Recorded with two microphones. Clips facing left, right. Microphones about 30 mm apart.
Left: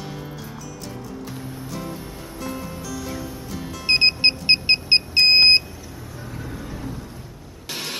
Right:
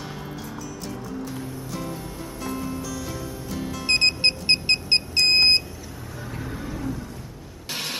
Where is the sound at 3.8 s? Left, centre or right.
Left.